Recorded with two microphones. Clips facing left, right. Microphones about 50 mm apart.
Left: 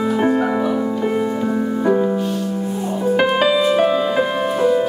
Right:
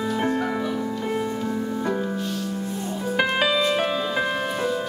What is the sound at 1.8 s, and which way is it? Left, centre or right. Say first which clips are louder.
Music: left 9 dB; centre.